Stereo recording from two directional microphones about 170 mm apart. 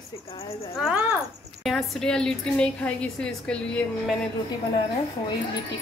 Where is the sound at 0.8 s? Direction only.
5° right (ahead or behind).